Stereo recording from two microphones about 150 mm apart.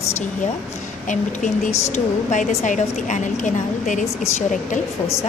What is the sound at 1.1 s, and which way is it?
A woman's voice, 55° left (ahead or behind).